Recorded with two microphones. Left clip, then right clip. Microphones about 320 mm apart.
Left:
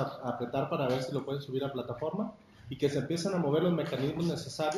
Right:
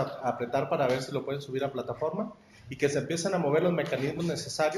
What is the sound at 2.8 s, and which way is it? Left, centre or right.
Speech, right.